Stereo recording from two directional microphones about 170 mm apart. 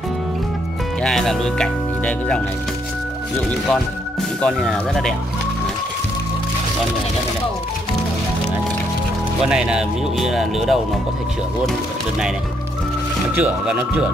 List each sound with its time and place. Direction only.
1.0 s speech: 5° left (ahead or behind)
4.4 s speech: 5° left (ahead or behind)
9.4 s speech: 5° right (ahead or behind)
13.4 s speech: 10° right (ahead or behind)